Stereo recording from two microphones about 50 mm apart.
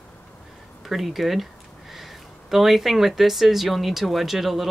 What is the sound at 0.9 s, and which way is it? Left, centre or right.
Speech, centre.